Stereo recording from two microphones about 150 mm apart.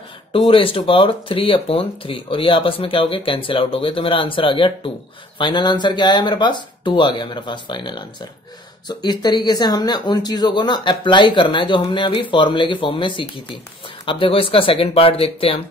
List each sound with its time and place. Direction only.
0.5 s speech: 35° left (ahead or behind)